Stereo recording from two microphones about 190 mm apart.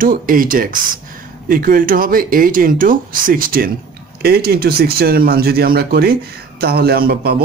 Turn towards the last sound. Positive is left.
turn(degrees=-55)  # may be behind; listen again after turning